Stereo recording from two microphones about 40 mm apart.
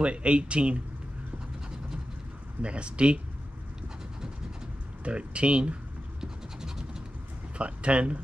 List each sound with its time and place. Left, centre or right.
0.0 s speech: right
2.6 s speech: right
5.0 s speech: right
6.2 s scratch: centre
7.5 s speech: right